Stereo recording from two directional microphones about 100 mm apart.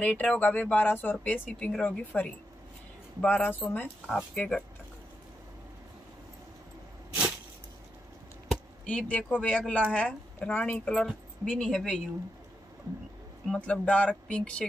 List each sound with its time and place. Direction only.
0.0 s speech: 15° left (ahead or behind)
8.8 s speech: 15° left (ahead or behind)
13.5 s speech: 10° left (ahead or behind)